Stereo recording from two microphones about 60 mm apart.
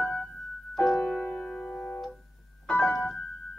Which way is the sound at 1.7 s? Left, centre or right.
Centre.